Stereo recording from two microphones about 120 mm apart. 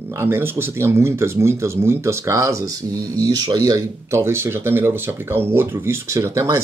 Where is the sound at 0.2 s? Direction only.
20° right (ahead or behind).